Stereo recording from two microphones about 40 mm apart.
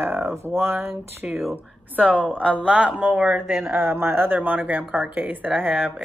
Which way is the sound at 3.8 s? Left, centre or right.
Right.